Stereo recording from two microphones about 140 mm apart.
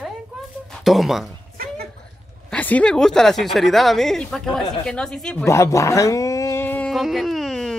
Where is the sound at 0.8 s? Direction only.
Centre (ahead or behind).